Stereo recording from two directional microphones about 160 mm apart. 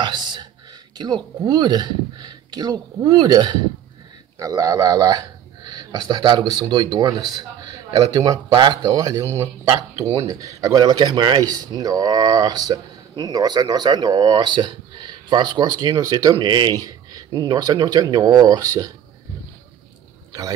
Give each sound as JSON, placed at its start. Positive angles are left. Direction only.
{"t": 0.0, "sound": "whispering", "side_deg": -25}
{"t": 0.9, "sound": "speech", "side_deg": -25}